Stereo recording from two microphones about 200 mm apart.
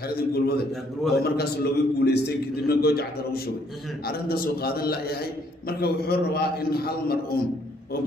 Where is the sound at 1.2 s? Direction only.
50° left (ahead or behind).